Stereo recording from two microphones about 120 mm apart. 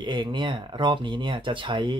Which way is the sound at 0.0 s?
40° right (ahead or behind).